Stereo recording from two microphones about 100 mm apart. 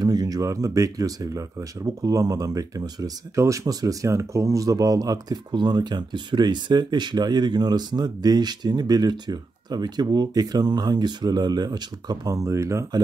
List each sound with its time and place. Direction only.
0.0 s speech: 40° right (ahead or behind)